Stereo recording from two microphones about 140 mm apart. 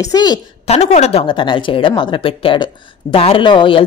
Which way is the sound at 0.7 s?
50° left (ahead or behind).